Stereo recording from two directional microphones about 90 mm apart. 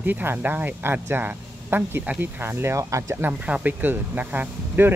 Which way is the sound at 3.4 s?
15° right (ahead or behind).